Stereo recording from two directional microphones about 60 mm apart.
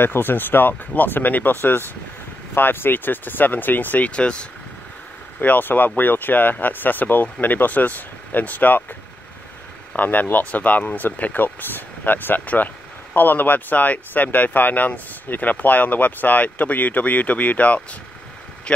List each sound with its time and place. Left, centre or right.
0.0 s speech: left
4.1 s speech: centre
5.4 s speech: left
9.9 s speech: left